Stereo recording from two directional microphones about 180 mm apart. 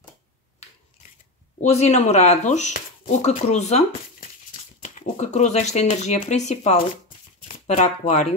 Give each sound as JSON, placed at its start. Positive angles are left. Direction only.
{"t": 1.6, "sound": "speech", "side_deg": 40}